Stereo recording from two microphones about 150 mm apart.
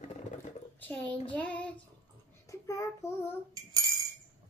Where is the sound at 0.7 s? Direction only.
10° left (ahead or behind).